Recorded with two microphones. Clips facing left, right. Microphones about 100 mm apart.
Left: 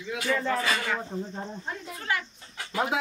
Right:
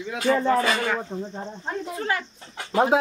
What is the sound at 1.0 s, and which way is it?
Speech, 20° right (ahead or behind).